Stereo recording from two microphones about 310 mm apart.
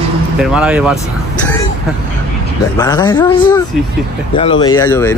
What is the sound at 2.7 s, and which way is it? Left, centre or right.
Speech, centre.